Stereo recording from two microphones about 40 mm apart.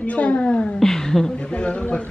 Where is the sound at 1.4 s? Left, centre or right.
Left.